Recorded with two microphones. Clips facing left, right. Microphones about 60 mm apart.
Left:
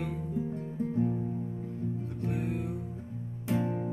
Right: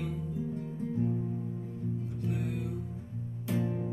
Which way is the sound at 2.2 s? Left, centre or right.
Left.